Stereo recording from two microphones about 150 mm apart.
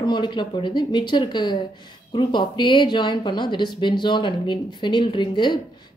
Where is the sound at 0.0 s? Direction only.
30° left (ahead or behind).